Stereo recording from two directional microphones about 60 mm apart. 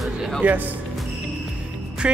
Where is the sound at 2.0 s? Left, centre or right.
Centre.